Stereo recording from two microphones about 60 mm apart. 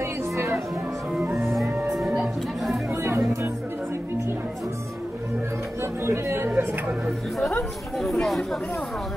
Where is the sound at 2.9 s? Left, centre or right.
Right.